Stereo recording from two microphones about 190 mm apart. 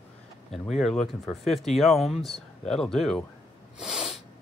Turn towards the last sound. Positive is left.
turn(degrees=-5)  # may be behind; listen again after turning